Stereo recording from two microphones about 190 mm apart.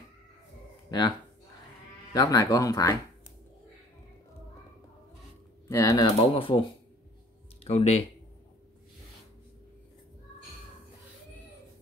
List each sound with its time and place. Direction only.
0.8 s speech: 20° left (ahead or behind)
2.1 s speech: 20° left (ahead or behind)
5.7 s speech: 15° left (ahead or behind)
7.6 s speech: 35° left (ahead or behind)